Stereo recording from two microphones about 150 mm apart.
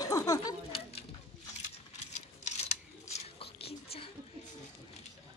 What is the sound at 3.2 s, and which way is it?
Whispering, 40° left (ahead or behind).